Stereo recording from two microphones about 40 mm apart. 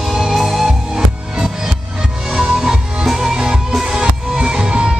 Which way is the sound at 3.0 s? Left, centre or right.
Centre.